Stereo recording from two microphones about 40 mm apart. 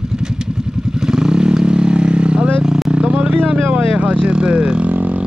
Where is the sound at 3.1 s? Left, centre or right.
Right.